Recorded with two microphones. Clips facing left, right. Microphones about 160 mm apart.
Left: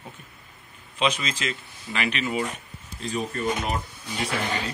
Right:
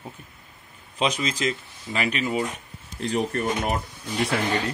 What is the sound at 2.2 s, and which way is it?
Speech, 30° right (ahead or behind).